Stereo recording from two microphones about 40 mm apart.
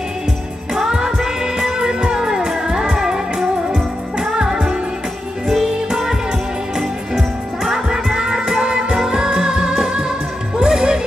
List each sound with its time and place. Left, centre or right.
0.7 s music: centre